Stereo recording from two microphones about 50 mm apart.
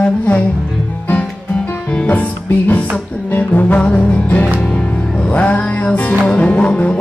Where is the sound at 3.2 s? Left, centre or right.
Left.